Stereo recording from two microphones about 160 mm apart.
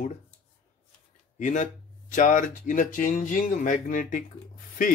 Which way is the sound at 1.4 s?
50° left (ahead or behind).